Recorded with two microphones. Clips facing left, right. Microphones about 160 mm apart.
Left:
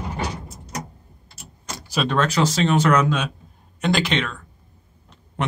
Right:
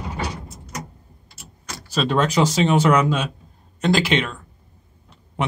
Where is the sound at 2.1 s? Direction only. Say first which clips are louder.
Right 2 dB; 10° right (ahead or behind).